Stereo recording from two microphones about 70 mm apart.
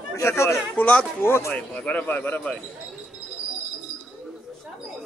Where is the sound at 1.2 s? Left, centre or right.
Left.